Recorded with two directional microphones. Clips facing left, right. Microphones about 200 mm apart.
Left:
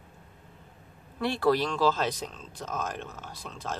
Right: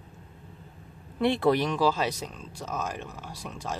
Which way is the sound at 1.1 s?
20° right (ahead or behind).